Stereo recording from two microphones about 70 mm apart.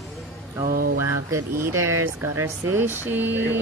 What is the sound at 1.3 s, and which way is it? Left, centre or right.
Speech, right.